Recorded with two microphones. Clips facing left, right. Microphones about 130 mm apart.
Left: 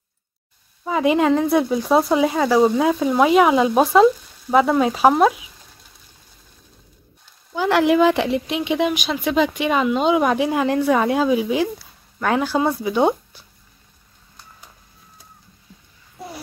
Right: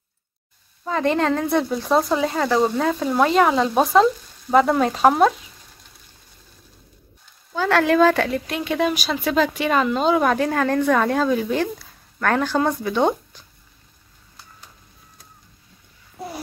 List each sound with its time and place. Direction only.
0.8 s speech: 10° left (ahead or behind)
7.5 s speech: 15° left (ahead or behind)